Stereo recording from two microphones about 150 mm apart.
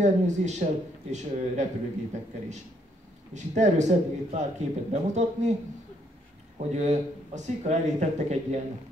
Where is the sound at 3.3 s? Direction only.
50° right (ahead or behind).